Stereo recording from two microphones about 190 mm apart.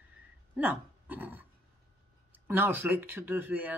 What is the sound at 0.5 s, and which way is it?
Speech, 10° right (ahead or behind).